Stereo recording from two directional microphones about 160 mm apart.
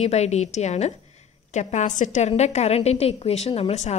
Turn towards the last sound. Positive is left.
turn(degrees=40)  # may be behind; listen again after turning